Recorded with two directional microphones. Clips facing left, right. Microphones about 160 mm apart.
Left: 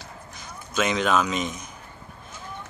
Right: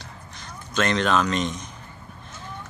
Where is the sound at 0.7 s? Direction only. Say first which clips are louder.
Right 1 dB; 5° left (ahead or behind).